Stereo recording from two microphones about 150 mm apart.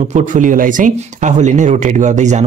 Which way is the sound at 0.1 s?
60° right (ahead or behind).